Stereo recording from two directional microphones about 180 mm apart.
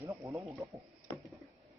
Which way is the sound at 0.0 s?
15° right (ahead or behind).